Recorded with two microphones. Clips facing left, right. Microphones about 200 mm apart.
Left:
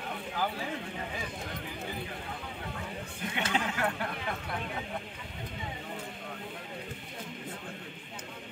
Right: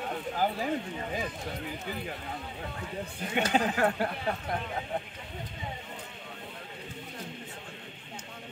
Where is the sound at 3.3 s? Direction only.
40° right (ahead or behind).